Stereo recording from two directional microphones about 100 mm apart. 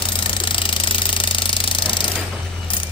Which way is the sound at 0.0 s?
55° left (ahead or behind).